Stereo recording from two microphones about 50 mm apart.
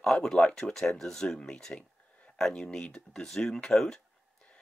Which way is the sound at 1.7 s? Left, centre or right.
Centre.